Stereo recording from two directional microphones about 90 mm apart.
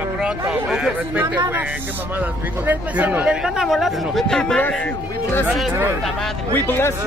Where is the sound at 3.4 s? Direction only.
5° right (ahead or behind); by 5.5 s 20° left (ahead or behind).